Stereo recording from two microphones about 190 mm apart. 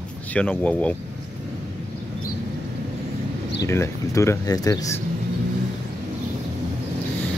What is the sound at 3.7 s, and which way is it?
Speech, 15° left (ahead or behind).